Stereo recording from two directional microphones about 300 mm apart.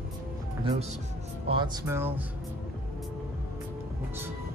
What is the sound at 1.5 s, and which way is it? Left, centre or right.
Speech, centre.